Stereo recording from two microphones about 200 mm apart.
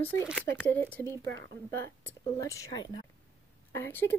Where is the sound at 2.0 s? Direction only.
15° left (ahead or behind).